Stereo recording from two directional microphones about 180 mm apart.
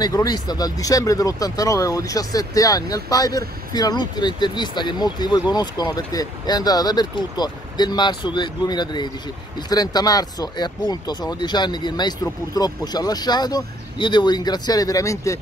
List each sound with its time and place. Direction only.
0.0 s speech: 20° left (ahead or behind)